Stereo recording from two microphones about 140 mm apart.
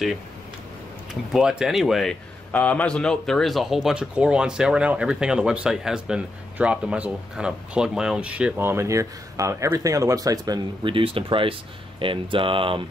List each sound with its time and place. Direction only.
1.3 s speech: 5° right (ahead or behind)
2.5 s speech: 10° left (ahead or behind); by 12.8 s 40° right (ahead or behind)